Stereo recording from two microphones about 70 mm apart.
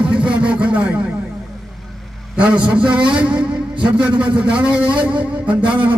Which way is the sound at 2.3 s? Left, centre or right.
Centre.